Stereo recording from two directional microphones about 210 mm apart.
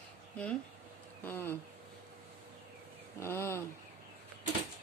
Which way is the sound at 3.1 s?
10° left (ahead or behind).